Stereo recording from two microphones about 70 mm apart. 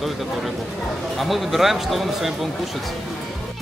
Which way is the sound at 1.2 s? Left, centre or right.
Centre.